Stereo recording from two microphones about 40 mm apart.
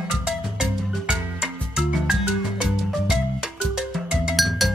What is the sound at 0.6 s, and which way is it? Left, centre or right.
Music, centre.